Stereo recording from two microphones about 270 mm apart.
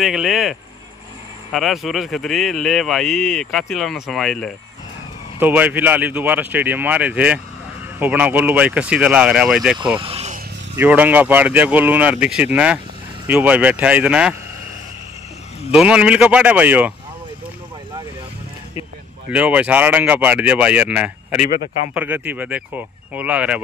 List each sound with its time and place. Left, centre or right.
0.0 s speech: centre
9.9 s vehicle: right
10.8 s speech: centre
15.7 s speech: centre
19.3 s speech: centre
21.3 s speech: left
21.9 s speech: centre